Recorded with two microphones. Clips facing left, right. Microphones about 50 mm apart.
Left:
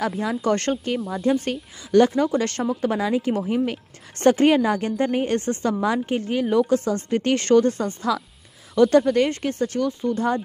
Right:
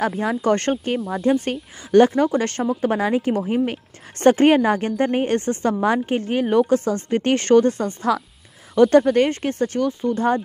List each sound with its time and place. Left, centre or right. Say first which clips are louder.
0.2 s a woman's voice: right 2 dB; right
0.9 s speech: right 2 dB; centre
1.2 s speech: right 2 dB; centre
1.5 s a woman's voice: right 3 dB; right
4.2 s a woman's voice: right 2 dB; right
7.1 s a woman's voice: right 2 dB; right